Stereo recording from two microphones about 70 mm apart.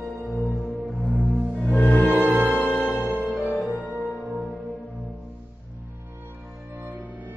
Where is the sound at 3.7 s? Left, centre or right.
Left.